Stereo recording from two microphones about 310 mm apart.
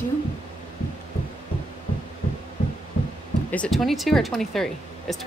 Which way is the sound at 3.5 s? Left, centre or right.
Centre.